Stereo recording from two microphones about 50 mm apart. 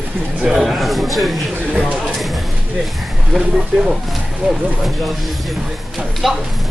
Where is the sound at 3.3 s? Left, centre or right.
Centre.